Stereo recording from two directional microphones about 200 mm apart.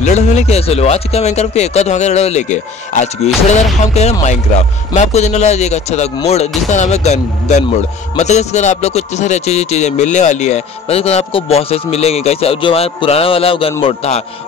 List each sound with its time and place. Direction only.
0.0 s speech: 35° left (ahead or behind)